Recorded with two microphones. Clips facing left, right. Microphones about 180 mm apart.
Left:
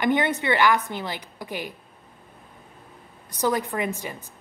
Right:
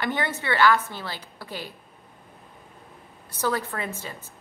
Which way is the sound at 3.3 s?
15° left (ahead or behind).